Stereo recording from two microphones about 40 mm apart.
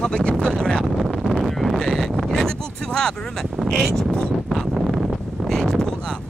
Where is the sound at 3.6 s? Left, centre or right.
Centre.